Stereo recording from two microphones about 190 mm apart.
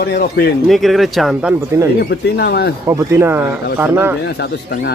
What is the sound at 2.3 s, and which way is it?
Speech, 60° left (ahead or behind).